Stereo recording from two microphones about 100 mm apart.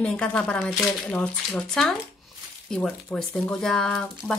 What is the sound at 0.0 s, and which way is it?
Speech, 10° left (ahead or behind).